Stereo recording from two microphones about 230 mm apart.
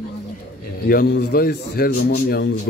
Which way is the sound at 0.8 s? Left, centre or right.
Left.